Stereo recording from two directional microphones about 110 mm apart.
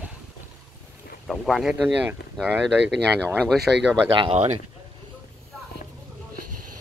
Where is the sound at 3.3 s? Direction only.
5° left (ahead or behind).